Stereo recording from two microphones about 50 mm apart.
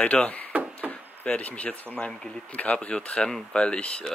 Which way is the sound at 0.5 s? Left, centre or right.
Right.